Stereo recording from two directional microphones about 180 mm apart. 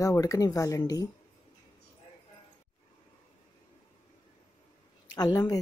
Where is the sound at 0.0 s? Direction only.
20° left (ahead or behind).